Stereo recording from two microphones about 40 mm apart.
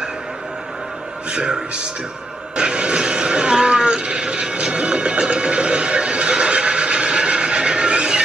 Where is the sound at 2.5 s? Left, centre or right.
Right.